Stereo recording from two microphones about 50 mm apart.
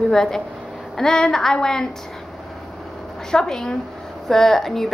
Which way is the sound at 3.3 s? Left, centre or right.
Centre.